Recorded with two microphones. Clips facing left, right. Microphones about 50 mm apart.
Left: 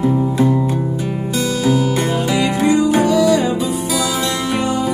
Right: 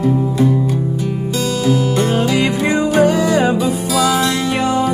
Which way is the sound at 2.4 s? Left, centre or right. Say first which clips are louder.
Left 1 dB; right.